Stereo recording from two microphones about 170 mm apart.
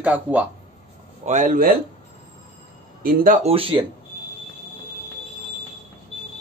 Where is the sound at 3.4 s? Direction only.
35° right (ahead or behind).